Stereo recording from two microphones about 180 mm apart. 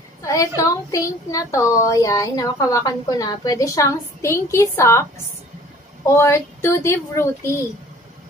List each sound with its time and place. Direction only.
0.2 s a woman's voice: 20° left (ahead or behind)
6.0 s speech: 15° left (ahead or behind)